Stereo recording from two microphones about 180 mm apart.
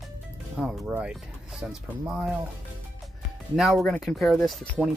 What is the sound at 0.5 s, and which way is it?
Speech, 5° right (ahead or behind).